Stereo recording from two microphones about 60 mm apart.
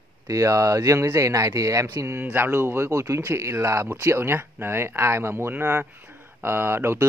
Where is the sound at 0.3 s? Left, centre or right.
Right.